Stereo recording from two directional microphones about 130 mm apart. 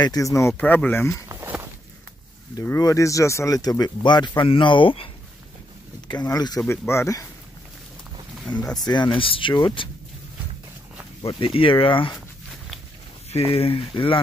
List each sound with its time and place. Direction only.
0.0 s speech: 25° left (ahead or behind)
0.6 s speech: 10° left (ahead or behind)
1.3 s walk: 15° right (ahead or behind)
2.6 s speech: 25° left (ahead or behind); by 5.1 s 40° left (ahead or behind)
6.0 s speech: 30° left (ahead or behind)
8.5 s speech: 35° left (ahead or behind)
11.2 s speech: 45° left (ahead or behind)
13.3 s speech: 50° left (ahead or behind)